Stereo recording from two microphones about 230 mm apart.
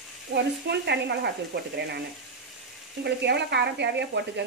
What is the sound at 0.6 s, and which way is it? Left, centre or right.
Speech, right.